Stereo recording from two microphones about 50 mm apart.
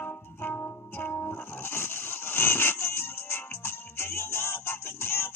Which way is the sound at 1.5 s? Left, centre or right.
Left.